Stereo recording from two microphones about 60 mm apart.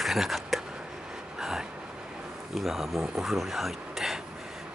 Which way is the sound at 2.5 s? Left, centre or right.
Centre.